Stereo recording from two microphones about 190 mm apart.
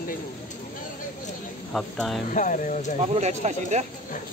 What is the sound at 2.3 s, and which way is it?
Speech, 45° left (ahead or behind).